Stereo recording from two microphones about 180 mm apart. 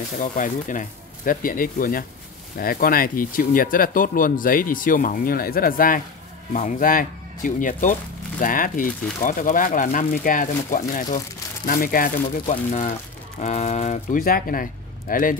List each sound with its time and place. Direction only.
0.2 s speech: 45° left (ahead or behind)